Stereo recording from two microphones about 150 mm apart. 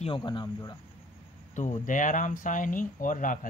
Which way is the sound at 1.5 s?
55° left (ahead or behind).